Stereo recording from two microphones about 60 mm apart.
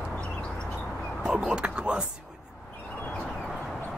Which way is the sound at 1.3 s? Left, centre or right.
Centre.